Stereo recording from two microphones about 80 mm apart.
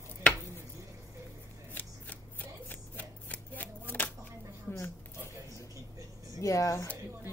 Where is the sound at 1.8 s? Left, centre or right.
Left.